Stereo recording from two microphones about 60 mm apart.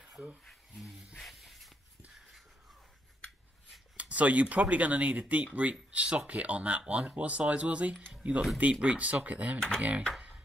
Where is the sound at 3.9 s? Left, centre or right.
Right.